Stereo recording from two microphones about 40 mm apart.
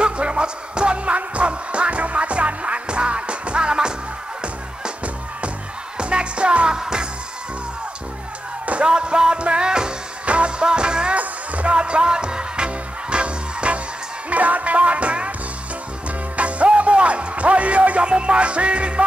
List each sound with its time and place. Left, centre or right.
0.0 s music: right
8.8 s music: right
11.1 s music: right
16.3 s music: right